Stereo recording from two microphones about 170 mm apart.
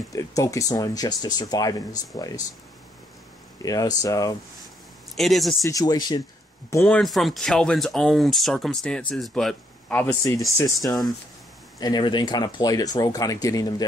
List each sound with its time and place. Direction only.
0.1 s speech: 20° left (ahead or behind)
3.6 s speech: 20° left (ahead or behind)
5.1 s speech: centre (ahead or behind)
5.6 s speech: 20° left (ahead or behind)
6.7 s speech: 10° left (ahead or behind)